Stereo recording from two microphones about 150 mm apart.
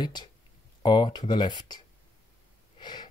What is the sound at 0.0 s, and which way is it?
Speech, 30° left (ahead or behind).